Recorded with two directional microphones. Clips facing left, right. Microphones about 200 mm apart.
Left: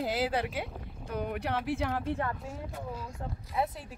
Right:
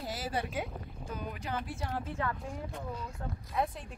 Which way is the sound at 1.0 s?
65° left (ahead or behind).